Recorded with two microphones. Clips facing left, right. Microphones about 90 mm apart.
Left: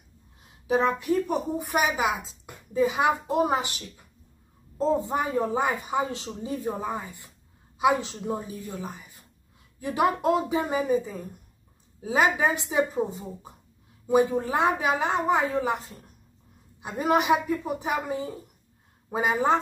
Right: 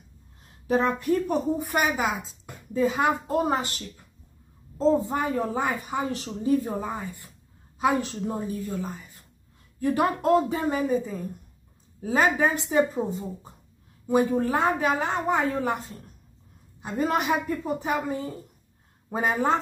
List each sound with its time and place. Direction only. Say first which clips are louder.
0.8 s speech: even; 5° left (ahead or behind)
5.3 s speech: left 1 dB; 20° left (ahead or behind)
9.8 s a woman's voice: right 1 dB; 15° left (ahead or behind)
14.0 s a woman's voice: even; 20° left (ahead or behind); by 19.5 s centre (ahead or behind)